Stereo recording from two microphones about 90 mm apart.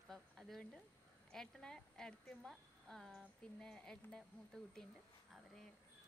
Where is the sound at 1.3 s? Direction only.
5° left (ahead or behind).